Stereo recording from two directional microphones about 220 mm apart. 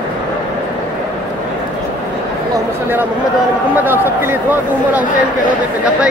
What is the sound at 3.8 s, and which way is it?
Speech, 10° right (ahead or behind).